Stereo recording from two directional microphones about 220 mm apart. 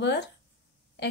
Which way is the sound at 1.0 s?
50° left (ahead or behind).